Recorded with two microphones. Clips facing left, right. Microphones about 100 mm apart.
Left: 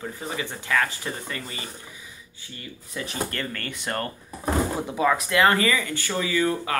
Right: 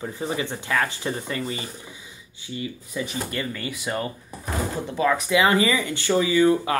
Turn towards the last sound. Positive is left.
turn(degrees=-20)  # may be behind; listen again after turning